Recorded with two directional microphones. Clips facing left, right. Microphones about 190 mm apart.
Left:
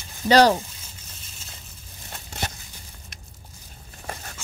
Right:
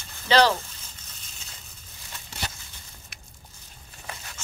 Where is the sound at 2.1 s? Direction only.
45° left (ahead or behind).